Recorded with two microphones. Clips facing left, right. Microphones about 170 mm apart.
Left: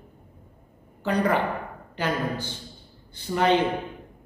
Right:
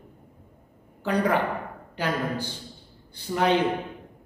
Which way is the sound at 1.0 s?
10° right (ahead or behind).